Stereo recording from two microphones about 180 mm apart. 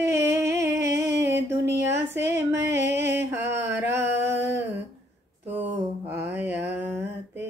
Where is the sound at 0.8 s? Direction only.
70° right (ahead or behind).